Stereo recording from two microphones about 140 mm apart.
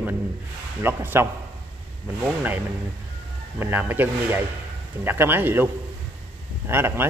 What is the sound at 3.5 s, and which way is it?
Speech, 15° right (ahead or behind).